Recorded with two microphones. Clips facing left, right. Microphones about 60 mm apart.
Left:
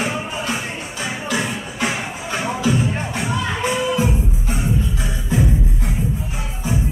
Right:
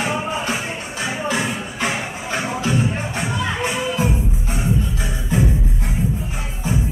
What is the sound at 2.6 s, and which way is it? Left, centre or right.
Music, centre.